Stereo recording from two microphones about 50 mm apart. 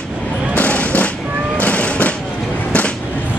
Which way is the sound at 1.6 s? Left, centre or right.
Left.